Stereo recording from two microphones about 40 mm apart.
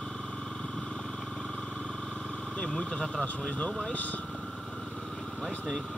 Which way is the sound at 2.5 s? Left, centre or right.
Left.